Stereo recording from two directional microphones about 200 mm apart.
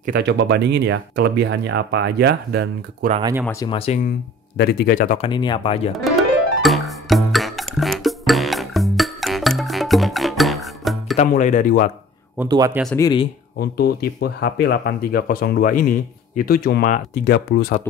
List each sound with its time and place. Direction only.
0.0 s speech: 55° right (ahead or behind)
3.1 s speech: 25° right (ahead or behind)
3.6 s speech: 30° left (ahead or behind)
4.6 s speech: 50° left (ahead or behind)
5.2 s speech: 25° left (ahead or behind)
6.0 s music: centre (ahead or behind)
11.1 s speech: 40° left (ahead or behind)
12.4 s speech: 20° right (ahead or behind)
12.9 s speech: 20° left (ahead or behind)
13.6 s speech: 50° left (ahead or behind)